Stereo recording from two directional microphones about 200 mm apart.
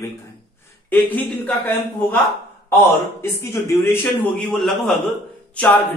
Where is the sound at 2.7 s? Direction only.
15° left (ahead or behind).